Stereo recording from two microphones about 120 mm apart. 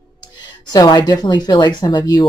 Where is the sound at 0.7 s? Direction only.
35° left (ahead or behind).